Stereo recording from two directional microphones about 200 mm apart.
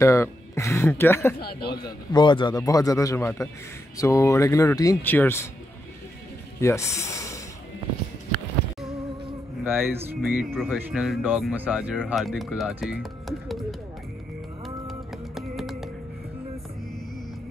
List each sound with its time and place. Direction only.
0.0 s a man's voice: 15° left (ahead or behind)
1.4 s speech: 50° left (ahead or behind)
1.9 s a man's voice: 20° left (ahead or behind)
6.6 s speech: 15° left (ahead or behind)
9.6 s music: centre (ahead or behind)
9.8 s speech: 10° right (ahead or behind)
10.2 s speech: centre (ahead or behind)
14.9 s music: centre (ahead or behind)